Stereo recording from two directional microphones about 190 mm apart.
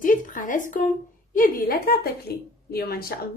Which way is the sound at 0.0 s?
45° left (ahead or behind).